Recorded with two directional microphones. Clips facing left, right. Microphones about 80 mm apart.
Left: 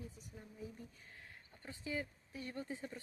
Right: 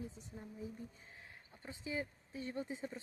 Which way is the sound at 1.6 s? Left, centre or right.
Right.